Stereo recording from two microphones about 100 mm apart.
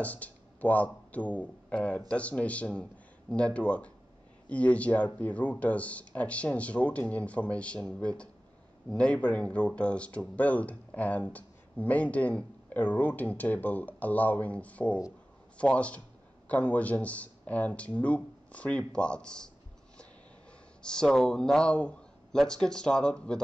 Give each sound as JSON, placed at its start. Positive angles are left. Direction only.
{"t": 0.0, "sound": "speech", "side_deg": 15}
{"t": 20.8, "sound": "speech", "side_deg": 10}